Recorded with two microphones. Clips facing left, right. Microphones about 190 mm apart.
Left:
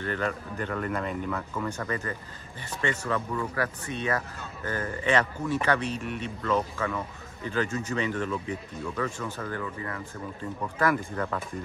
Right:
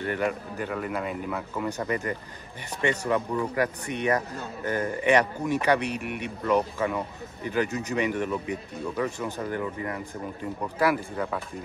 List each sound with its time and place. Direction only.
0.0 s a man's voice: 15° right (ahead or behind)